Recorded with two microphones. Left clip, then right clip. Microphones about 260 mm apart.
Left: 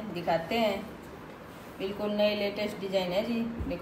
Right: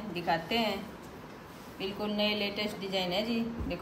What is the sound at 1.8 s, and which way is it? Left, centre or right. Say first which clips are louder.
A woman's voice: left 4 dB; centre.